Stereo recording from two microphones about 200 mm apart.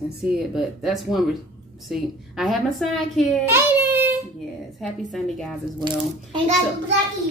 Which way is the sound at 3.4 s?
10° right (ahead or behind).